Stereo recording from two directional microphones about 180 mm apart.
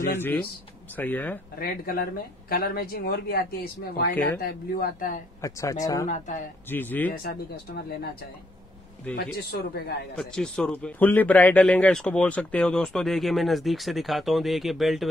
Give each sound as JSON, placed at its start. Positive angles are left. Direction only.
{"t": 0.1, "sound": "speech", "side_deg": 10}
{"t": 1.6, "sound": "speech", "side_deg": 55}
{"t": 5.4, "sound": "speech", "side_deg": 20}
{"t": 6.0, "sound": "speech", "side_deg": 40}
{"t": 6.7, "sound": "speech", "side_deg": 10}
{"t": 9.1, "sound": "speech", "side_deg": 65}
{"t": 10.1, "sound": "a man's voice", "side_deg": 5}